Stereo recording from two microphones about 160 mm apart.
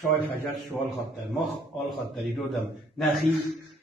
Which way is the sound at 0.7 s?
5° left (ahead or behind).